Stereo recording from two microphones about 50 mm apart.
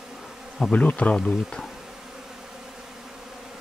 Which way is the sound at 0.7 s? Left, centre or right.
Left.